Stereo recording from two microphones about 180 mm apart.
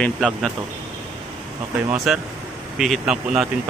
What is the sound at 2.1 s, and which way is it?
A man's voice, 5° right (ahead or behind).